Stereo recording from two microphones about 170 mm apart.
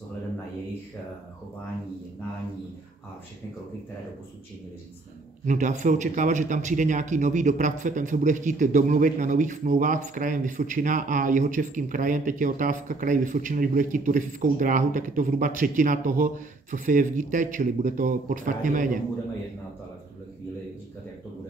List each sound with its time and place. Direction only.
5.4 s a man's voice: 45° right (ahead or behind)